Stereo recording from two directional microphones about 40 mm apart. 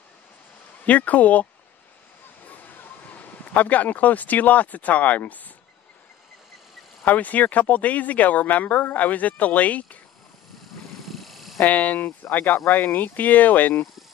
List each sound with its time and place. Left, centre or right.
0.8 s speech: left
7.1 s speech: left
11.1 s a sound: centre
11.6 s speech: left